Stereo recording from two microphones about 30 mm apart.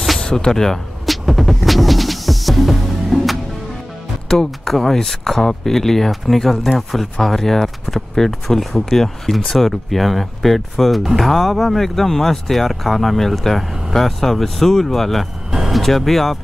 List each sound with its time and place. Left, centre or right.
0.4 s speech: centre
1.0 s music: centre
4.3 s speech: centre